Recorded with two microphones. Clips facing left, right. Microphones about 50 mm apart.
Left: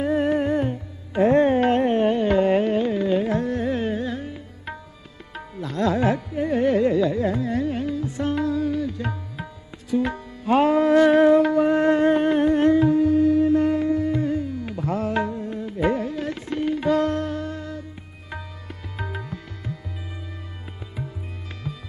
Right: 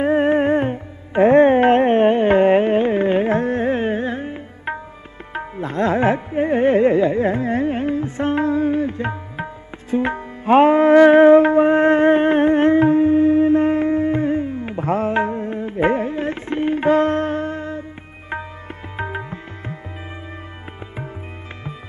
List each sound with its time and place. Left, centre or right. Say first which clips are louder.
0.0 s music: right 5 dB; right
18.9 s music: right 6 dB; right